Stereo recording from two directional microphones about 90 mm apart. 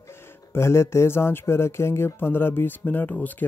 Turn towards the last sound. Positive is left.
turn(degrees=20)  # may be behind; listen again after turning